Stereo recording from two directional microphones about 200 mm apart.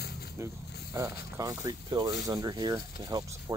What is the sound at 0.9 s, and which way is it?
Speech, 15° right (ahead or behind).